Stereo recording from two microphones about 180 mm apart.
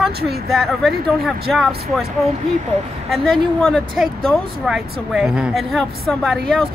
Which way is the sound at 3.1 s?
Centre (ahead or behind).